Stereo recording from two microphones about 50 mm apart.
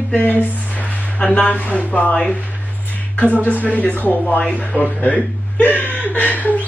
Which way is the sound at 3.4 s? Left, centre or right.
Left.